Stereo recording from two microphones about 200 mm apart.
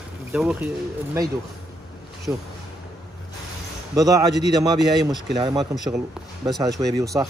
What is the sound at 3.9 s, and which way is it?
A man's voice, 20° right (ahead or behind).